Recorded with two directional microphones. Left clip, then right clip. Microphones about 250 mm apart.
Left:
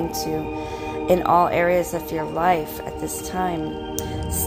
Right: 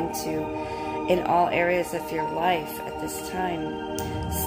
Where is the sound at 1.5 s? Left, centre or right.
Left.